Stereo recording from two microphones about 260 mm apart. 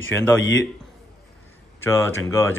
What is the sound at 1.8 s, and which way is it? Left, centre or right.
Speech, centre.